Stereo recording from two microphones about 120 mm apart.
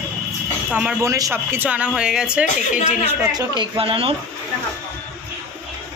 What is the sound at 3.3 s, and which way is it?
Speech, 35° right (ahead or behind).